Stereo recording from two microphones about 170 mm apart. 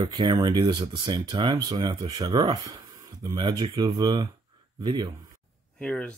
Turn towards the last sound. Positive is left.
turn(degrees=5)  # may be behind; listen again after turning